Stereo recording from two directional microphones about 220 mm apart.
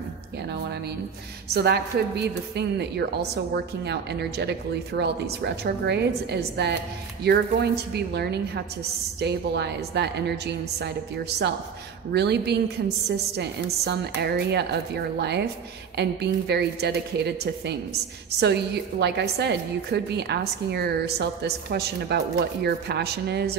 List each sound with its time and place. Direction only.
0.5 s a woman's voice: 50° right (ahead or behind)